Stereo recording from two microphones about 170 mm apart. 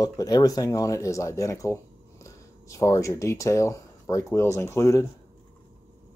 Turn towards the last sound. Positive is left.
turn(degrees=15)  # may be behind; listen again after turning